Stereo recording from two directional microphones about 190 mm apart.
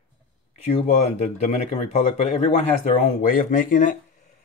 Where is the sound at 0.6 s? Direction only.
35° left (ahead or behind).